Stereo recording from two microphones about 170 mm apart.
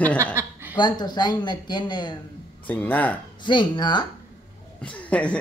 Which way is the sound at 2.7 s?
10° left (ahead or behind).